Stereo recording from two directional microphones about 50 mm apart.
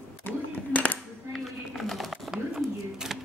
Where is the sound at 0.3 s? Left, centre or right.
Left.